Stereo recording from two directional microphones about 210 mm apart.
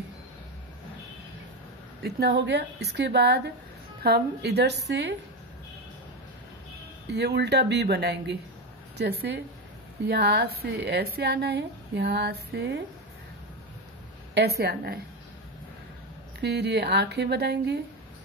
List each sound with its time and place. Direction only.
2.0 s speech: 50° right (ahead or behind)
7.1 s speech: 55° right (ahead or behind)
14.3 s speech: 50° right (ahead or behind)
16.3 s speech: 50° right (ahead or behind)